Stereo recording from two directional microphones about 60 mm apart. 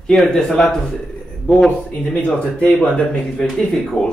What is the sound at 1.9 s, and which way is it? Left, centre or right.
Speech, left.